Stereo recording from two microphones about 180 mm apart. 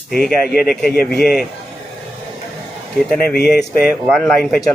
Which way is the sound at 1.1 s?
60° left (ahead or behind).